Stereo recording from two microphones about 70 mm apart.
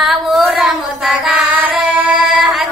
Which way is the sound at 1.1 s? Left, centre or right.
Centre.